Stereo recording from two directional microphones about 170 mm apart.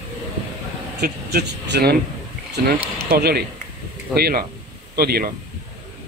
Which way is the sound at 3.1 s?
65° right (ahead or behind).